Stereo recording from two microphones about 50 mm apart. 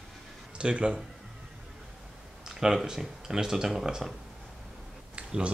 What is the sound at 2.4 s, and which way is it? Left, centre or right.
Speech, centre.